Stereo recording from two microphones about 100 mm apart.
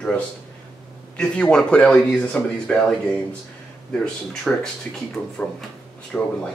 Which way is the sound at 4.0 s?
10° left (ahead or behind).